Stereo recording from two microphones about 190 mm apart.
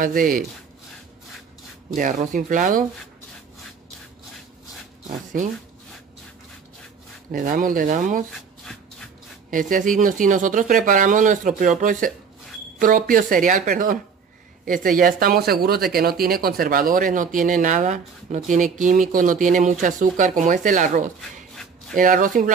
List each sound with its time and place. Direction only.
0.0 s speech: 45° right (ahead or behind)
2.0 s speech: 45° right (ahead or behind)
7.2 s speech: 45° right (ahead or behind)
8.3 s shuffle: 5° left (ahead or behind)
9.5 s speech: 45° right (ahead or behind)